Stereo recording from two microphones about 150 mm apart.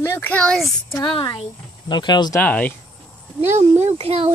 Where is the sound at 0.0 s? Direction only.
15° left (ahead or behind).